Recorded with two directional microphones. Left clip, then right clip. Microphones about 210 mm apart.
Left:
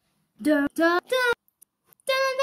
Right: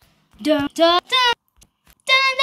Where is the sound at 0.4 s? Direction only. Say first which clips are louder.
Right 5 dB; centre (ahead or behind).